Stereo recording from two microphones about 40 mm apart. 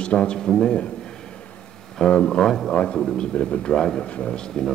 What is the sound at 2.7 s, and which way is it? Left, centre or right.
A man's voice, left.